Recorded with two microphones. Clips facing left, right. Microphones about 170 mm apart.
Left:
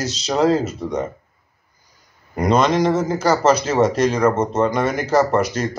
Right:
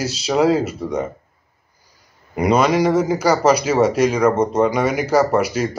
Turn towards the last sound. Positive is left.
turn(degrees=-10)  # may be behind; listen again after turning